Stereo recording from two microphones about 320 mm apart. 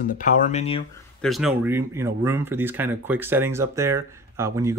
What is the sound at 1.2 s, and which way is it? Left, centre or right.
Speech, centre.